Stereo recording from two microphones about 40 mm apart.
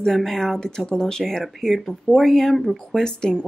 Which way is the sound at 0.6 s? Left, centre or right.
Centre.